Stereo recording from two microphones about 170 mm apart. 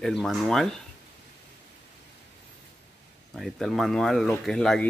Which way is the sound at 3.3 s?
Centre (ahead or behind).